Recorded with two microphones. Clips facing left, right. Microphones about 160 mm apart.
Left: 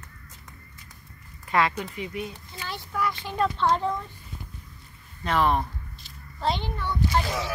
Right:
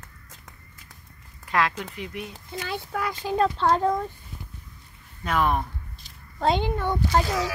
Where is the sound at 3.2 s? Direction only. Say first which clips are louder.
Right 6 dB; 40° right (ahead or behind).